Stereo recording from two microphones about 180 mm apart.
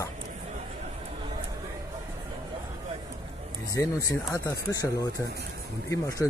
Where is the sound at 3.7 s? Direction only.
20° left (ahead or behind).